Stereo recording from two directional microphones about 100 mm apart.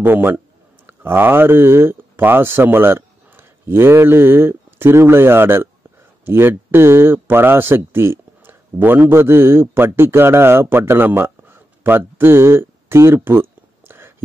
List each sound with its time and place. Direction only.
0.0 s speech: 20° right (ahead or behind)